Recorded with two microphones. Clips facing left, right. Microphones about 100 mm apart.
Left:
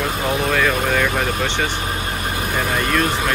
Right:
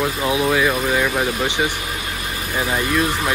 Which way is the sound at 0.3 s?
5° right (ahead or behind).